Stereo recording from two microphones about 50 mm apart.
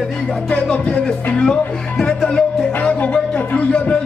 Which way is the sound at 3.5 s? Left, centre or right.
Left.